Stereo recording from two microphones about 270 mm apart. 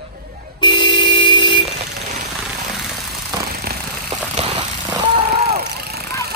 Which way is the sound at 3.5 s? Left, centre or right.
Right.